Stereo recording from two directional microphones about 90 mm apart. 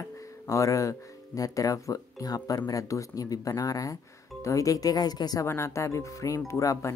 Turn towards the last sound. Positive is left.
turn(degrees=35)  # may be behind; listen again after turning